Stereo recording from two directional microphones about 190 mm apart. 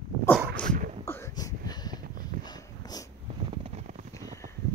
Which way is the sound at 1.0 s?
15° left (ahead or behind).